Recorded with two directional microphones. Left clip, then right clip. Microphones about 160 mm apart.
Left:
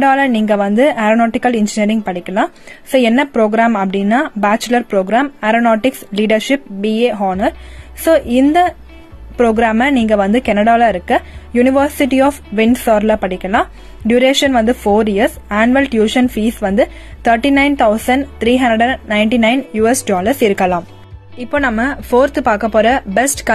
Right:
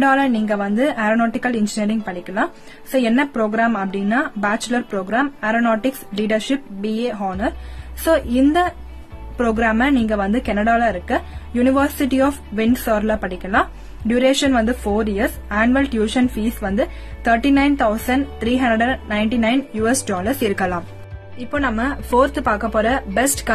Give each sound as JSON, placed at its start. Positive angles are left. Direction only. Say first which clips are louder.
{"t": 0.0, "sound": "a woman's voice", "louder": "left 5 dB", "side_deg": 25}